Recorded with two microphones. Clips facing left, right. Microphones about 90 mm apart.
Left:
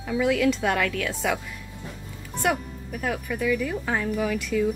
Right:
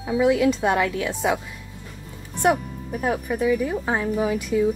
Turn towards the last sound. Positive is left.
turn(degrees=-20)  # may be behind; listen again after turning